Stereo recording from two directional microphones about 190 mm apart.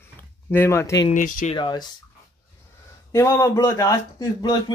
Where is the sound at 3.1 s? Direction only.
15° left (ahead or behind).